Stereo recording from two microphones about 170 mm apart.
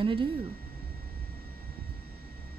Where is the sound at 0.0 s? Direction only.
30° right (ahead or behind).